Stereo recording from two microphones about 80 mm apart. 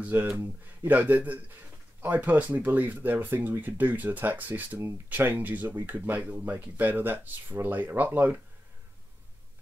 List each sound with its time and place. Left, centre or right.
0.0 s speech: centre